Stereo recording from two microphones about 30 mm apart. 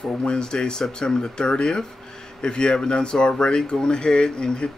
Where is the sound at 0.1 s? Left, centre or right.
Left.